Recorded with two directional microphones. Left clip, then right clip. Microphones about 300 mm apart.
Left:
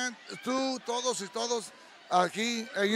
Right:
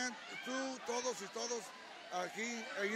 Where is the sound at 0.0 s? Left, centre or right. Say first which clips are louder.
Left 7 dB; left.